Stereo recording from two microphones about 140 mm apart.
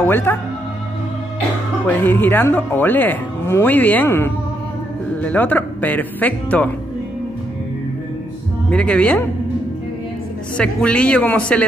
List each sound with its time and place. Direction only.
0.0 s speech: 15° left (ahead or behind)
1.9 s speech: 15° left (ahead or behind)
8.6 s speech: 10° left (ahead or behind)
10.6 s speech: 5° left (ahead or behind)